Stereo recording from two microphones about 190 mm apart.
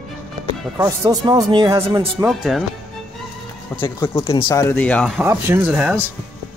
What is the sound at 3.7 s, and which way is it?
Speech, 5° left (ahead or behind).